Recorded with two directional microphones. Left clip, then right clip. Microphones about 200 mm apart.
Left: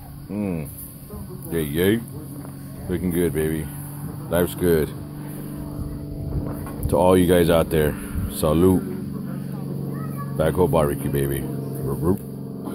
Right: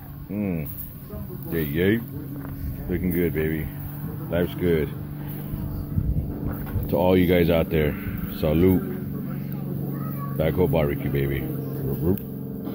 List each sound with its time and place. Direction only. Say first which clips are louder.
0.3 s speech: left 1 dB; 15° left (ahead or behind)
6.9 s speech: left 3 dB; 15° left (ahead or behind)
10.3 s speech: left 3 dB; 15° left (ahead or behind)